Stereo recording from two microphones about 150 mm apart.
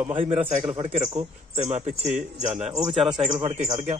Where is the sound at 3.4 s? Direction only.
45° right (ahead or behind).